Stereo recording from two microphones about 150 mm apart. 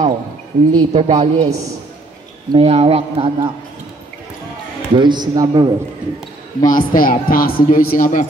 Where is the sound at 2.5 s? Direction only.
40° right (ahead or behind).